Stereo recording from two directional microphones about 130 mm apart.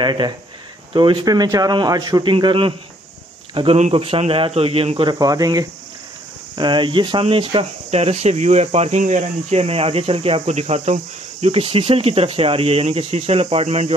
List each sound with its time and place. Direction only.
0.0 s a man's voice: 35° right (ahead or behind)
5.2 s speech: 30° right (ahead or behind); by 13.9 s 50° right (ahead or behind)